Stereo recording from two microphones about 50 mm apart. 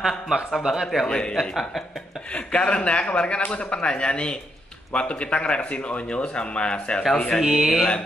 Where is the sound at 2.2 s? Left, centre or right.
Left.